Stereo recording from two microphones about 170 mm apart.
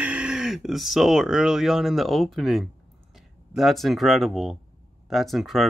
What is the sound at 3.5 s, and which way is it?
Speech, centre (ahead or behind).